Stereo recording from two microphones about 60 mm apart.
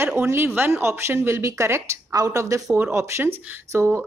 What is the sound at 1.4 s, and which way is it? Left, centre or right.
Speech, right.